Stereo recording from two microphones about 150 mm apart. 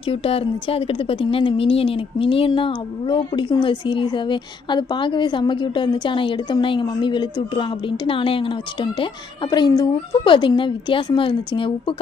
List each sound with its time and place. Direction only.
0.0 s speech: 40° left (ahead or behind)